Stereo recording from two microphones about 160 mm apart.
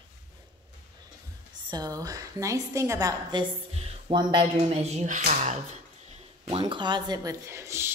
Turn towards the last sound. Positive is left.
turn(degrees=-15)  # may be behind; listen again after turning